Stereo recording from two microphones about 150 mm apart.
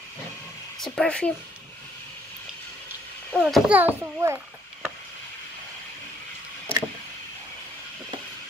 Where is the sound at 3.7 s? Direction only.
15° right (ahead or behind).